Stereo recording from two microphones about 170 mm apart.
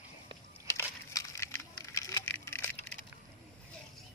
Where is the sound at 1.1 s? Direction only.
15° left (ahead or behind).